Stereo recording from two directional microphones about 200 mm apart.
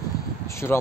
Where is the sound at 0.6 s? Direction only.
10° left (ahead or behind).